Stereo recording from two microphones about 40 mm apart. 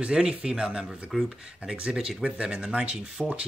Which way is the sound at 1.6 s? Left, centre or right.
Right.